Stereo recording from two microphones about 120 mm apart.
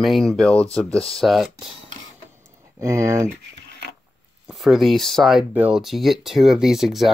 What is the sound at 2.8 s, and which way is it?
Speech, 25° right (ahead or behind).